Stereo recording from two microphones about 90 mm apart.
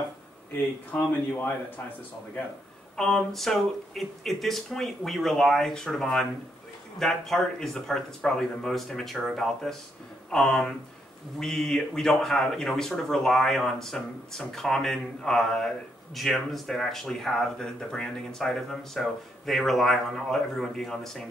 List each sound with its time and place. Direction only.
0.9 s speech: 20° left (ahead or behind)
3.0 s speech: 5° left (ahead or behind)